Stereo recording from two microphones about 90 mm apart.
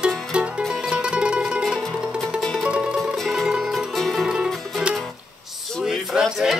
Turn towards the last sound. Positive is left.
turn(degrees=-5)  # may be behind; listen again after turning